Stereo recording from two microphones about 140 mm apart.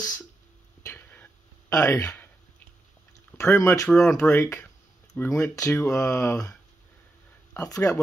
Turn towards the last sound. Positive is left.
turn(degrees=25)  # may be behind; listen again after turning